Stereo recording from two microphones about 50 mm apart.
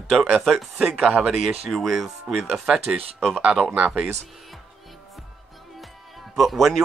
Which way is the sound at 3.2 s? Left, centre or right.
Centre.